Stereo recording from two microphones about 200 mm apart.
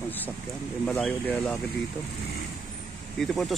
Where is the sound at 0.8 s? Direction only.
5° left (ahead or behind).